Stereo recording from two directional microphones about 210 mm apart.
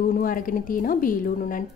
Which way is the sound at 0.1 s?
40° left (ahead or behind).